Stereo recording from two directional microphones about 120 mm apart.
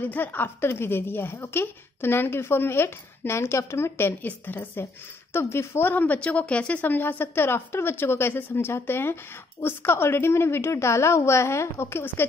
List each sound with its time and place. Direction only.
0.0 s a woman's voice: 15° left (ahead or behind)